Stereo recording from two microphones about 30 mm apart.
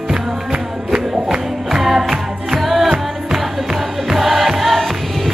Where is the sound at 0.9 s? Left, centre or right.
Right.